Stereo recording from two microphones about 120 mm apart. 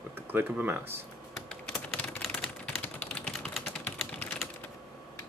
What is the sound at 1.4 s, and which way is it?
Typing, 5° left (ahead or behind).